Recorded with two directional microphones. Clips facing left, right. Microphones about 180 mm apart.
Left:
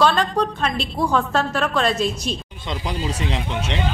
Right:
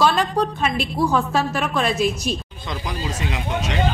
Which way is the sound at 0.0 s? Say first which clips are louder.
Even; 10° right (ahead or behind).